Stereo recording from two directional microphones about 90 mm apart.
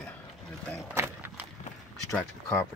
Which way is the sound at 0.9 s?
25° right (ahead or behind).